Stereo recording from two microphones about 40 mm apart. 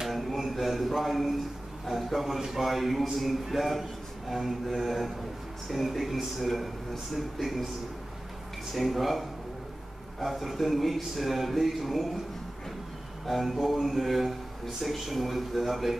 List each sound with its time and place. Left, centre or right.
0.1 s a sound: centre
1.9 s a man's voice: centre
8.7 s a man's voice: centre
10.2 s a man's voice: centre
13.3 s a man's voice: centre